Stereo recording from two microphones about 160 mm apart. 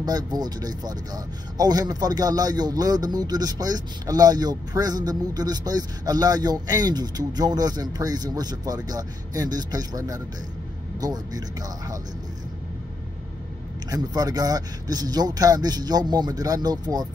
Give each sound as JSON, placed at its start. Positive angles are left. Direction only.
{"t": 0.0, "sound": "speech", "side_deg": -25}
{"t": 13.8, "sound": "speech", "side_deg": -25}